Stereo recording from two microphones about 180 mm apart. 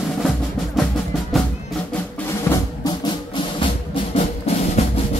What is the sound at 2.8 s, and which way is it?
Music, 25° left (ahead or behind).